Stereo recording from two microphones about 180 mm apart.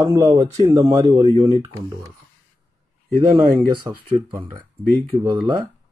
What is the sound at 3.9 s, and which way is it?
Speech, 15° right (ahead or behind).